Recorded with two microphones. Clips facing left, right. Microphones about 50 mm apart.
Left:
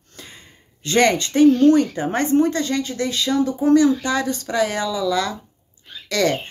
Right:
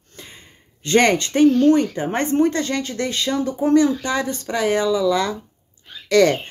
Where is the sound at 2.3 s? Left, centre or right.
Right.